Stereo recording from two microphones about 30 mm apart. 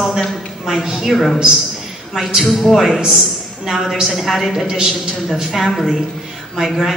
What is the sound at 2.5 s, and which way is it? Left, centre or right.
A man's voice, centre.